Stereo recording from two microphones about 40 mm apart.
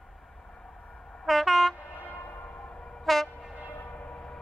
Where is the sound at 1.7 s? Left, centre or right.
Left.